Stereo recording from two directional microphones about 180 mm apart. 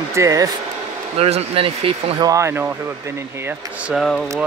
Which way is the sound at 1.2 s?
35° right (ahead or behind).